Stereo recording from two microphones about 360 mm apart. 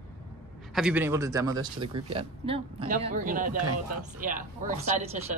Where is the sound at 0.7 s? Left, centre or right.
Centre.